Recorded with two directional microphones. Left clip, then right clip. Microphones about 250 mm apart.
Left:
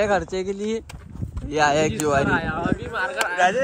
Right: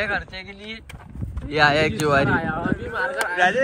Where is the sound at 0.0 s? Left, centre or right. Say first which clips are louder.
Left 4 dB; left.